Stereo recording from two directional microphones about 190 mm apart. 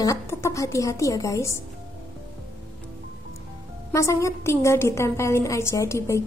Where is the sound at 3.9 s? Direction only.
15° left (ahead or behind).